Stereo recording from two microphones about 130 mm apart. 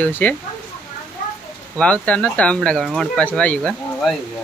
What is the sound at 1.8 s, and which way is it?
Speech, 10° left (ahead or behind).